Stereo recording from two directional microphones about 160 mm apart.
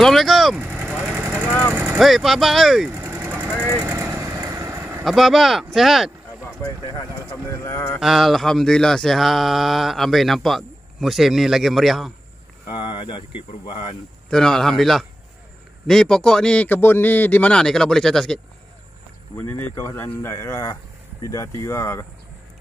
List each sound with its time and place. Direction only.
0.0 s vehicle: centre (ahead or behind)
1.4 s speech: 5° left (ahead or behind)
1.8 s a sound: 5° right (ahead or behind)
2.9 s vehicle: 10° right (ahead or behind)
3.5 s speech: 5° left (ahead or behind)
3.8 s vehicle: 15° right (ahead or behind)
5.0 s a sound: centre (ahead or behind)
6.6 s speech: 20° left (ahead or behind)
8.0 s a sound: centre (ahead or behind)
12.7 s speech: 30° left (ahead or behind)
14.3 s a sound: 5° left (ahead or behind)
19.7 s speech: 15° left (ahead or behind)